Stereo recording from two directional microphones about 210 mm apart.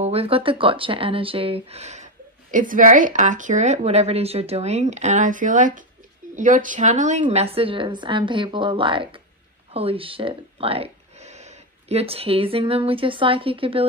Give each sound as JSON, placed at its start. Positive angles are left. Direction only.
{"t": 0.0, "sound": "speech", "side_deg": -30}